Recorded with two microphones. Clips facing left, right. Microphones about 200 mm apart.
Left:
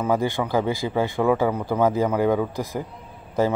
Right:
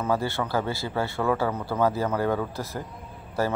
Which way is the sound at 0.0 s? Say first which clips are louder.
Left 4 dB; 15° left (ahead or behind).